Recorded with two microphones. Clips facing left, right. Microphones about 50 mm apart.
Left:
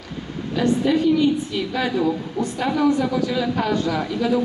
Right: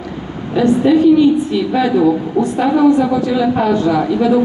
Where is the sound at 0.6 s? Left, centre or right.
Right.